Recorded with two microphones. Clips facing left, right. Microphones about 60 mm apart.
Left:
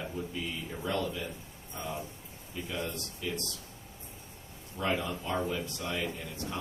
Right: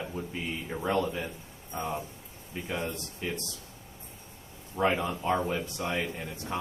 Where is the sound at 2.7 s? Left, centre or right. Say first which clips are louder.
Right 2 dB; right.